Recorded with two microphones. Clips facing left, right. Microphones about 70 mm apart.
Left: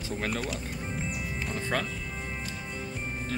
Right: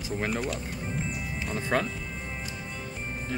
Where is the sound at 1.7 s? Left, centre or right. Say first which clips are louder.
Right 4 dB; right.